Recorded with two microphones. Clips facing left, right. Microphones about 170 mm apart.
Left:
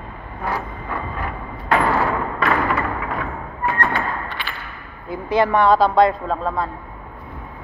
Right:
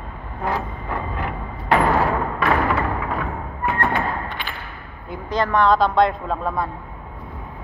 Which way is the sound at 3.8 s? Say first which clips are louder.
Right 1 dB; 15° right (ahead or behind).